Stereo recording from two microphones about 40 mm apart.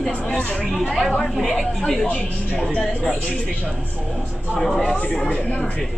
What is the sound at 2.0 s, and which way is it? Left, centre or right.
Speech, left.